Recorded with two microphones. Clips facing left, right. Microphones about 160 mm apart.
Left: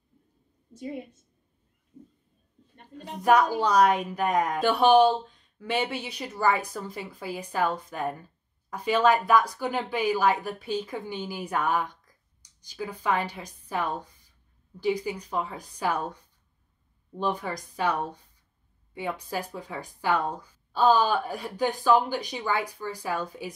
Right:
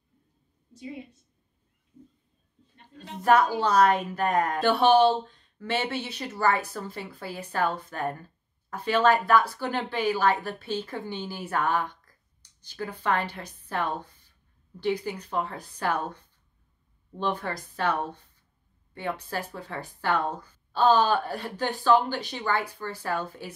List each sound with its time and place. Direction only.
0.7 s a woman's voice: 50° left (ahead or behind)
3.2 s speech: 15° left (ahead or behind)
17.2 s speech: 10° left (ahead or behind)
18.9 s speech: 10° left (ahead or behind)